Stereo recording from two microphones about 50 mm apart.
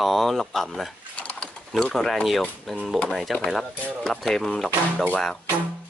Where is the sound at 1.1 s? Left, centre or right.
Left.